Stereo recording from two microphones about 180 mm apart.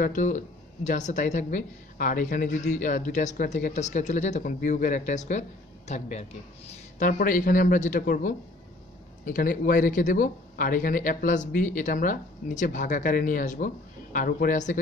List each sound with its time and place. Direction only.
0.0 s a man's voice: 45° left (ahead or behind)
7.0 s speech: 50° left (ahead or behind)